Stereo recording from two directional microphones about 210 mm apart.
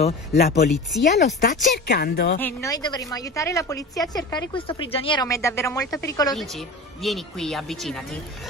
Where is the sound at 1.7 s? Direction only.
50° left (ahead or behind).